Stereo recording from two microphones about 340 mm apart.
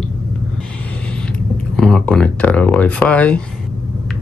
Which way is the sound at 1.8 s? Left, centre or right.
Centre.